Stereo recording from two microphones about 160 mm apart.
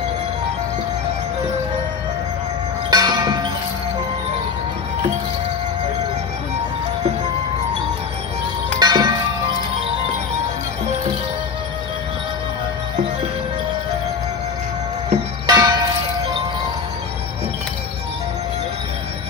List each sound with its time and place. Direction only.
2.9 s a sound: 25° right (ahead or behind)
8.7 s music: 25° right (ahead or behind)
15.4 s music: 20° right (ahead or behind)